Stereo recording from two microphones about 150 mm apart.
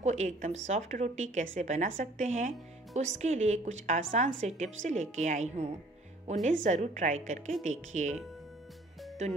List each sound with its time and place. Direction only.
0.0 s a woman's voice: 50° right (ahead or behind)